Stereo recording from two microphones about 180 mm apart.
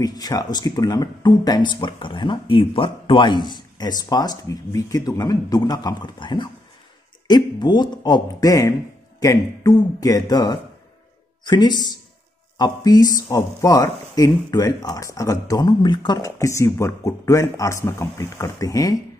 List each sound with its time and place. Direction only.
0.0 s a man's voice: 20° left (ahead or behind)